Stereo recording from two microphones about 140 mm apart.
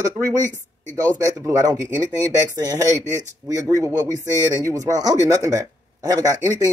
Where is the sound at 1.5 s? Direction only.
25° right (ahead or behind).